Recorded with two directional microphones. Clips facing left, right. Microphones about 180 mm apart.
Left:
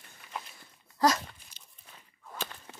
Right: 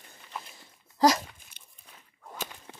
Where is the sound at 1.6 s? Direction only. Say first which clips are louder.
Even; 60° right (ahead or behind).